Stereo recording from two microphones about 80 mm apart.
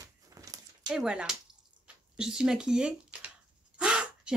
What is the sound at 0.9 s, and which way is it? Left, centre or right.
Speech, centre.